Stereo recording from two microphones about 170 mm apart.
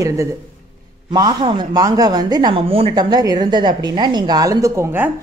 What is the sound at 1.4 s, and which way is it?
A woman's voice, 25° right (ahead or behind).